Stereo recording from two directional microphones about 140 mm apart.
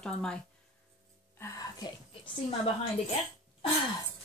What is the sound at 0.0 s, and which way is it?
Speech, 5° left (ahead or behind).